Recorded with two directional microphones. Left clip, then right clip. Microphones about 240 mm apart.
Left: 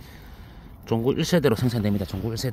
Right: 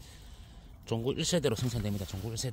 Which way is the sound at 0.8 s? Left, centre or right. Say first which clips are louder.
Left 9 dB; centre.